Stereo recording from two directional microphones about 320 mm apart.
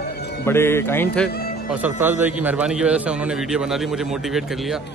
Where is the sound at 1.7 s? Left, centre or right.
Centre.